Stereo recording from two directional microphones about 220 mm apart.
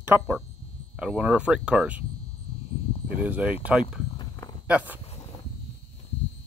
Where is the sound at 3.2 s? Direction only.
5° right (ahead or behind).